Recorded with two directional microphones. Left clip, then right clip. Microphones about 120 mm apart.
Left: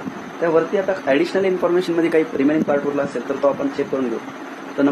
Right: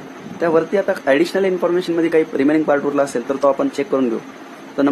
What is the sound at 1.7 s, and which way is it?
Speech, 15° right (ahead or behind).